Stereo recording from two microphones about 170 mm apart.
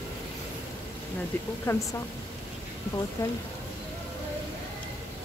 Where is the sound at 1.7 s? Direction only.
15° left (ahead or behind).